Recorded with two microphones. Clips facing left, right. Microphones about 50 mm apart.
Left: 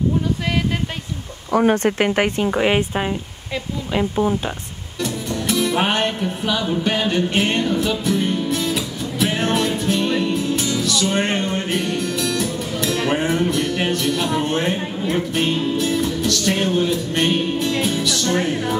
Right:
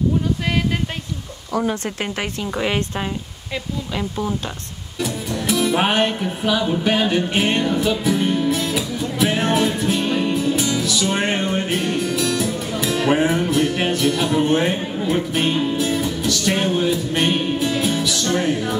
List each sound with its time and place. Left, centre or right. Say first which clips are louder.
1.5 s speech: left 6 dB; left; by 4.4 s centre
5.0 s music: even; centre